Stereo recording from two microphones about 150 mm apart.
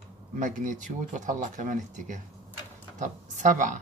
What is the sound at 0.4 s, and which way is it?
Speech, 60° right (ahead or behind).